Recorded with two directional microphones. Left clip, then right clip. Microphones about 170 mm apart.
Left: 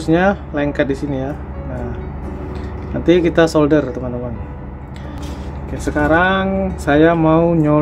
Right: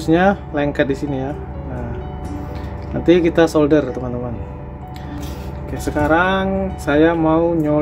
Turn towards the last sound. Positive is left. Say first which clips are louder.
# left 2 dB
turn(degrees=10)  # may be behind; listen again after turning